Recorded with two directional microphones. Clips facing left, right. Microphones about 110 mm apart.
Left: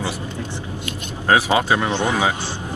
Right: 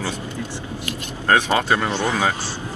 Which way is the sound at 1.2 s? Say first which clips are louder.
Left 1 dB; 10° left (ahead or behind).